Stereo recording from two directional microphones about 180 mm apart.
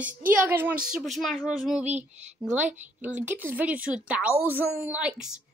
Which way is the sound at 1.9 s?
40° right (ahead or behind).